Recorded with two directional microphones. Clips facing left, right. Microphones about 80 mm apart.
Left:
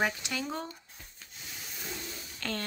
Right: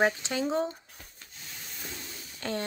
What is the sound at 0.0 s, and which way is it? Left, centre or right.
Speech, right.